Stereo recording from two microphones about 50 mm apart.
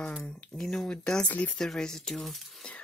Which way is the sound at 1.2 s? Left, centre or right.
Left.